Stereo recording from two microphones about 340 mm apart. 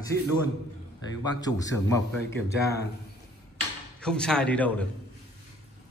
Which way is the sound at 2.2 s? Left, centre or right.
Left.